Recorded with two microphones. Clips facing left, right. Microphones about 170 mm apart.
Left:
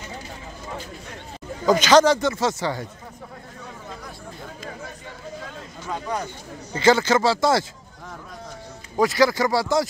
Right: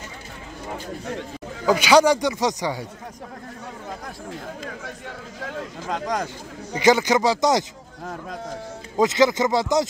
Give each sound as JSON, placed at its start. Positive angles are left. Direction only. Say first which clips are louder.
{"t": 1.7, "sound": "speech", "louder": "even", "side_deg": -10}
{"t": 4.3, "sound": "speech", "louder": "right 3 dB", "side_deg": -75}
{"t": 5.4, "sound": "a sound", "louder": "right 5 dB", "side_deg": -70}
{"t": 6.7, "sound": "speech", "louder": "even", "side_deg": -15}
{"t": 8.9, "sound": "speech", "louder": "right 1 dB", "side_deg": -20}